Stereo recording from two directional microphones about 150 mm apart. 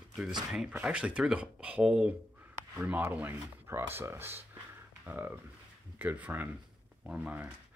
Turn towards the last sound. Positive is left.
turn(degrees=-10)  # may be behind; listen again after turning